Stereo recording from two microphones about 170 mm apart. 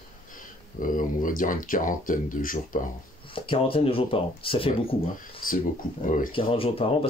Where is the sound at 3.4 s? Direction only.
30° left (ahead or behind).